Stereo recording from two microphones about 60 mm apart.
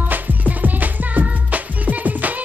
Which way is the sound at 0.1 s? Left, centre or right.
Right.